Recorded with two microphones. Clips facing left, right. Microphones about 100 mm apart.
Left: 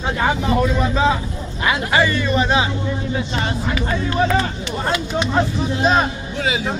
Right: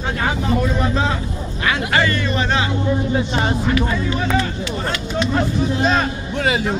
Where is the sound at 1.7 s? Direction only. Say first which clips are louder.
Left 1 dB; 10° left (ahead or behind).